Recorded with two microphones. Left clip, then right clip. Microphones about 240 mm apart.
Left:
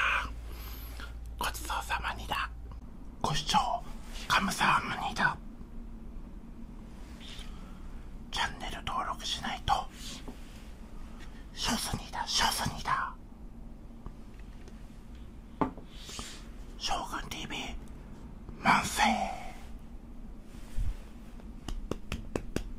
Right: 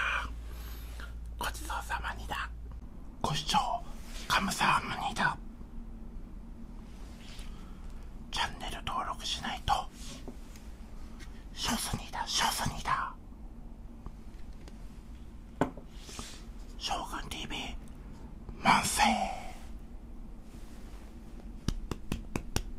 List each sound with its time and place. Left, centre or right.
0.0 s a sound: centre
0.9 s speech: centre
8.3 s whispering: centre
11.5 s whispering: centre
16.8 s whispering: centre